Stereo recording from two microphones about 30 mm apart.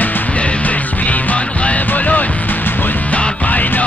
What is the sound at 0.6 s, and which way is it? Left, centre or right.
Music, left.